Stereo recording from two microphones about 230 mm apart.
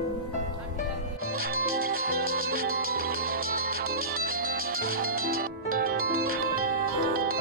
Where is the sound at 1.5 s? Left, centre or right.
Right.